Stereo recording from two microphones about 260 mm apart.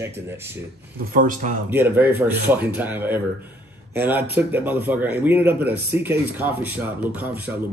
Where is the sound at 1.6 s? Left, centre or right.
Centre.